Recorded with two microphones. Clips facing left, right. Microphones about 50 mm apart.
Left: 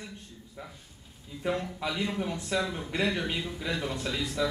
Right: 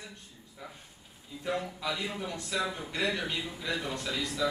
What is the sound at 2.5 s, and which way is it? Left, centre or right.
A man's voice, centre.